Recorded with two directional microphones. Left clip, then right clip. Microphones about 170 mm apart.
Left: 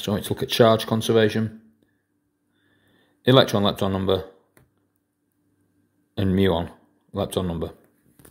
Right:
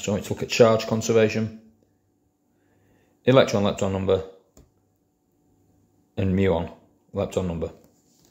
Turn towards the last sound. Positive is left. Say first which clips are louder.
# even
turn(degrees=30)  # may be behind; listen again after turning